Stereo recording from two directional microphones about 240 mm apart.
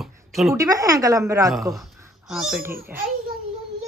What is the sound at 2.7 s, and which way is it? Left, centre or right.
Speech, right.